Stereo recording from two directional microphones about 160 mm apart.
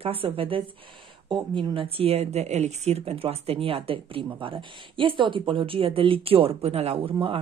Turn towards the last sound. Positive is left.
turn(degrees=-35)  # may be behind; listen again after turning